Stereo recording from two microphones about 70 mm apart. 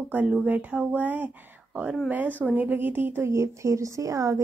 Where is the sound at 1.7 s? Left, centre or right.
Centre.